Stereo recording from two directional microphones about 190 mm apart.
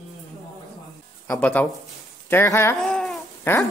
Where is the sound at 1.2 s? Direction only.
5° left (ahead or behind).